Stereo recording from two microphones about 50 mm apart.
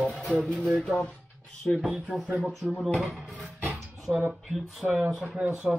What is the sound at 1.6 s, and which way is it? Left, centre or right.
Speech, left.